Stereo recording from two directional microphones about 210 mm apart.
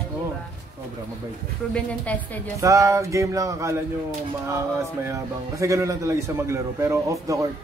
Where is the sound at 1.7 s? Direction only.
5° left (ahead or behind).